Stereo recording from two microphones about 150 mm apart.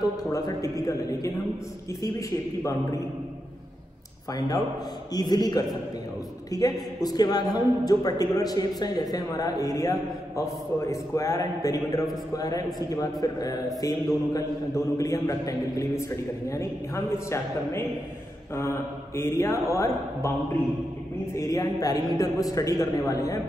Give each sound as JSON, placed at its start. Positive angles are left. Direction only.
{"t": 0.0, "sound": "a man's voice", "side_deg": 25}
{"t": 5.1, "sound": "a man's voice", "side_deg": 25}
{"t": 21.4, "sound": "a man's voice", "side_deg": 25}